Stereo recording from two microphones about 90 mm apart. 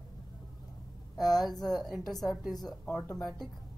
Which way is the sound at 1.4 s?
Centre (ahead or behind).